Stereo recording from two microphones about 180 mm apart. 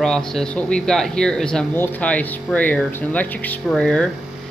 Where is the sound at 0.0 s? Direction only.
5° left (ahead or behind).